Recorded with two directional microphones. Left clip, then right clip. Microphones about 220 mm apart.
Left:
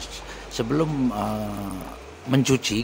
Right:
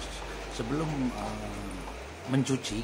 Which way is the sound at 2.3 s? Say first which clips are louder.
Left 9 dB; 35° left (ahead or behind).